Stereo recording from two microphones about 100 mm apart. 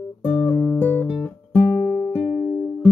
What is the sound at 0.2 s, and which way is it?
Music, 10° left (ahead or behind).